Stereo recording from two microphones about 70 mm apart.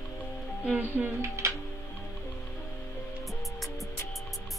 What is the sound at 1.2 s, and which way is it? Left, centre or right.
Speech, right.